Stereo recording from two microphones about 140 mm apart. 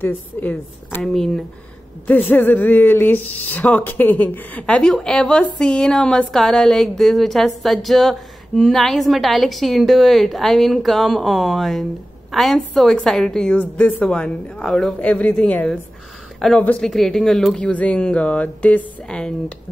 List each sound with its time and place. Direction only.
0.0 s a woman's voice: 15° left (ahead or behind)
2.0 s a woman's voice: 15° left (ahead or behind)